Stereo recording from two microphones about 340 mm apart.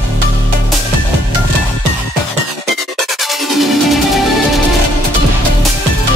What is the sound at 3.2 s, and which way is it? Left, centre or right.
Music, centre.